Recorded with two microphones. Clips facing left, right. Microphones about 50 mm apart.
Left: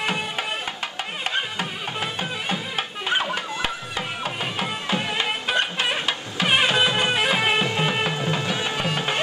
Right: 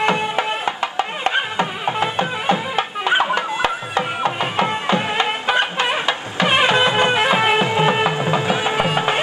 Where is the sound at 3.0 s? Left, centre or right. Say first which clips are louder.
Right 7 dB; right.